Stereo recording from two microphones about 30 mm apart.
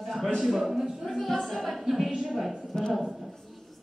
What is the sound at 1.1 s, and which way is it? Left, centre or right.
Speech, centre.